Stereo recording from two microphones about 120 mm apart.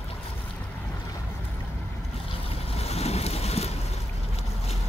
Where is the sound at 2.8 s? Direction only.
60° left (ahead or behind).